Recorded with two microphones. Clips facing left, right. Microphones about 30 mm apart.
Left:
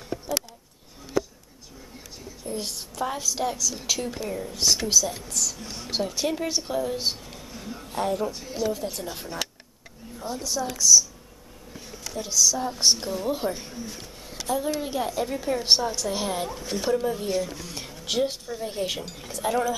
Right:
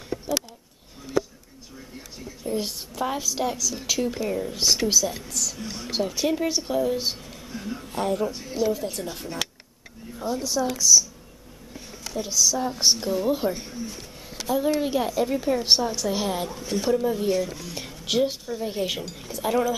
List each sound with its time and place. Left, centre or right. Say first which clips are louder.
2.4 s a woman's voice: right 4 dB; centre
4.3 s speech: right 1 dB; centre
7.5 s speech: right 6 dB; centre
7.9 s a woman's voice: right 1 dB; centre
12.1 s a woman's voice: even; centre
15.0 s speech: right 3 dB; centre